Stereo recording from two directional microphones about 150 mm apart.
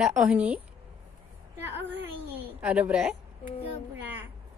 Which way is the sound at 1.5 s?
15° right (ahead or behind).